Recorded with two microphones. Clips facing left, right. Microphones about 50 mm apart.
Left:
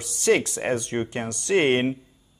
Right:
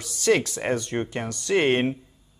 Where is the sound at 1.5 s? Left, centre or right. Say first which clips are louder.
Left 1 dB; left.